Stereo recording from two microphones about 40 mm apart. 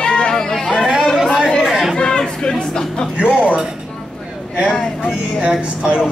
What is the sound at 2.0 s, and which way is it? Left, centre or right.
Speech, centre.